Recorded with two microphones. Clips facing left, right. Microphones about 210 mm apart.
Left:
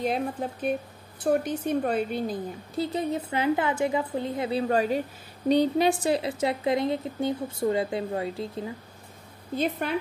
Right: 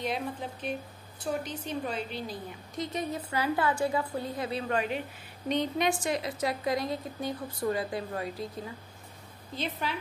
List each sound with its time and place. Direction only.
0.0 s speech: 45° left (ahead or behind)
2.7 s speech: 30° left (ahead or behind)
9.6 s speech: 55° left (ahead or behind)